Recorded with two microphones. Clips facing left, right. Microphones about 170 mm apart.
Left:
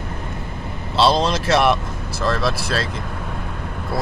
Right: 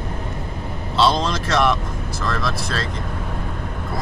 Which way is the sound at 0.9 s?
30° left (ahead or behind).